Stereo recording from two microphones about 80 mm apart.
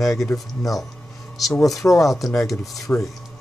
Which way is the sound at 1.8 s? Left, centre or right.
Left.